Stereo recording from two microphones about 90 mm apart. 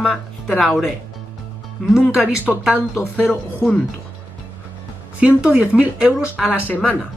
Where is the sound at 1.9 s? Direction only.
5° right (ahead or behind).